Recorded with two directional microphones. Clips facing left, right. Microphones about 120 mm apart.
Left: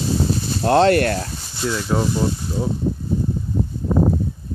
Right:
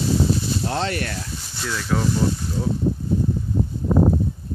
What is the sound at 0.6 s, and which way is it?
Speech, 65° left (ahead or behind).